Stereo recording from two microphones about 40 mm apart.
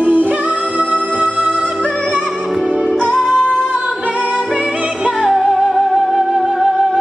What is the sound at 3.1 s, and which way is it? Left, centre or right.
Music, centre.